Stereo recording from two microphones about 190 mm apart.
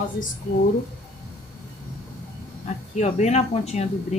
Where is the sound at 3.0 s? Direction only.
35° left (ahead or behind).